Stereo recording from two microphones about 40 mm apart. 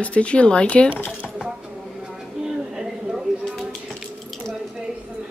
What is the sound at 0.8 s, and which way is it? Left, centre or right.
Speech, left.